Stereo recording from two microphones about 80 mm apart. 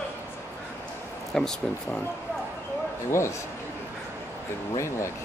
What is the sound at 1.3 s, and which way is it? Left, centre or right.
Speech, centre.